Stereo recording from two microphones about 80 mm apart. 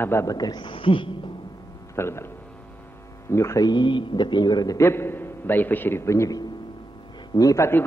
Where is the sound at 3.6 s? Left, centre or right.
Left.